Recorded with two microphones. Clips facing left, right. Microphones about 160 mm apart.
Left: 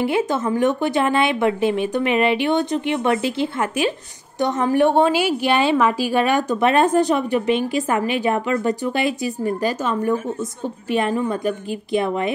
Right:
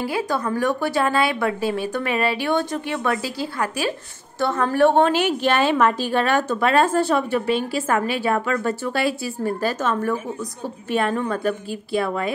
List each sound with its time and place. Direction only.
0.0 s a woman's voice: 20° left (ahead or behind)